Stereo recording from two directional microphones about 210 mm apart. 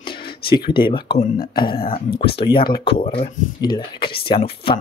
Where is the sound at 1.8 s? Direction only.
45° left (ahead or behind).